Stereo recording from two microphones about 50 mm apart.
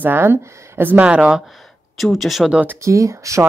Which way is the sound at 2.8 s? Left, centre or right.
Right.